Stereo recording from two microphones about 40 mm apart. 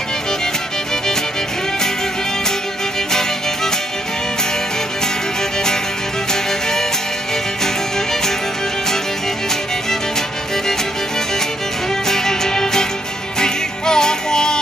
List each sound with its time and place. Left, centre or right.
3.1 s music: centre
6.3 s music: centre
12.1 s music: centre